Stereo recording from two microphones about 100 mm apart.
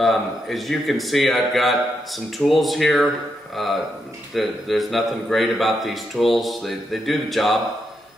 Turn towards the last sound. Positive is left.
turn(degrees=0)  # may be behind; listen again after turning